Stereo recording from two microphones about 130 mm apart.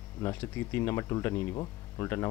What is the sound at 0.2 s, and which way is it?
Speech, 20° left (ahead or behind).